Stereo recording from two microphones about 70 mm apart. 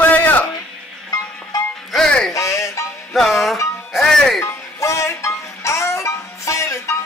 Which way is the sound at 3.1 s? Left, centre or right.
Centre.